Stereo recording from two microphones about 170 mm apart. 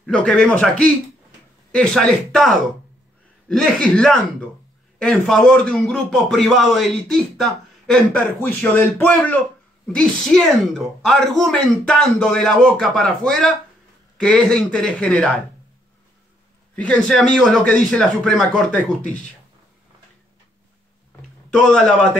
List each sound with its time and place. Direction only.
0.0 s a man's voice: 5° left (ahead or behind)
16.7 s a man's voice: 5° left (ahead or behind)
21.6 s a man's voice: 5° left (ahead or behind)